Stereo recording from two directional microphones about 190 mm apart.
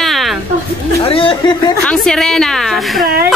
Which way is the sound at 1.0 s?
30° left (ahead or behind).